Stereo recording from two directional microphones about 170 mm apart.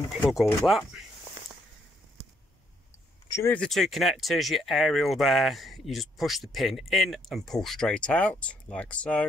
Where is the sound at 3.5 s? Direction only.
5° left (ahead or behind).